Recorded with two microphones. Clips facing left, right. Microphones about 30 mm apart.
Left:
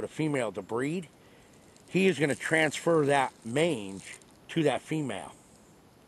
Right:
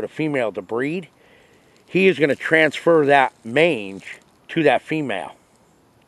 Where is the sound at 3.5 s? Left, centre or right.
Right.